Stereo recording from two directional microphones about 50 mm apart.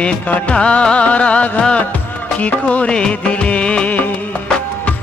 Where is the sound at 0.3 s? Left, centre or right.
Left.